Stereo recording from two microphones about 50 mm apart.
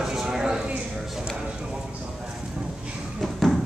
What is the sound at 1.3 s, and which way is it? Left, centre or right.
Speech, centre.